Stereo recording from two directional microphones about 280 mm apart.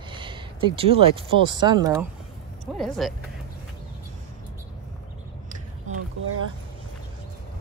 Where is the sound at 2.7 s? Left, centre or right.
Centre.